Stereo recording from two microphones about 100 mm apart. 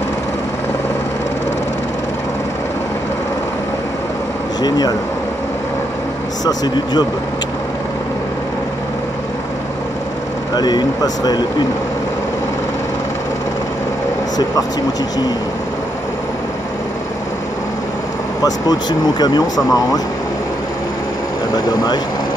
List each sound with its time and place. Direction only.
4.6 s speech: 40° left (ahead or behind)
6.4 s speech: 40° left (ahead or behind)
10.5 s speech: 40° left (ahead or behind)
18.4 s speech: 40° left (ahead or behind)